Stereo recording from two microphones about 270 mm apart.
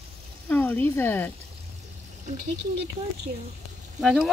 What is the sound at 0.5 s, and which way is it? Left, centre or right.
Speech, centre.